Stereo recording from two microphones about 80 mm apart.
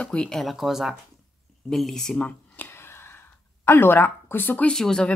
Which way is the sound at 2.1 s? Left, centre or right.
Centre.